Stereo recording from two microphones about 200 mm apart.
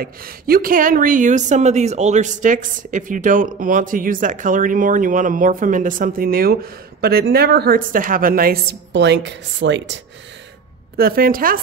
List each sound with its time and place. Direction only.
0.0 s a woman's voice: 50° right (ahead or behind); by 9.9 s 65° right (ahead or behind)
11.0 s a woman's voice: 50° right (ahead or behind)